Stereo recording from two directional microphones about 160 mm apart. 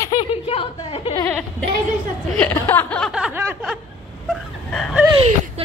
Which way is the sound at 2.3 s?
10° left (ahead or behind).